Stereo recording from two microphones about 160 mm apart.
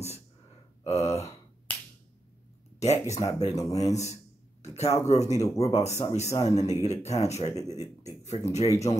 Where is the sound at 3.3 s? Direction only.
20° left (ahead or behind).